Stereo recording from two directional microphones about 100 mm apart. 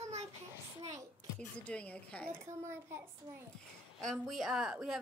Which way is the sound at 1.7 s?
15° left (ahead or behind).